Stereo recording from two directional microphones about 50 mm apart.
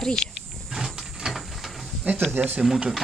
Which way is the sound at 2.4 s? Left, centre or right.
Right.